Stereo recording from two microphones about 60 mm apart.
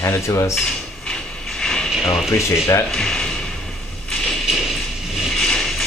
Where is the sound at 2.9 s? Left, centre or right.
Centre.